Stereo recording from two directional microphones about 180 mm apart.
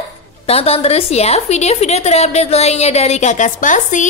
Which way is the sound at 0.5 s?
35° left (ahead or behind).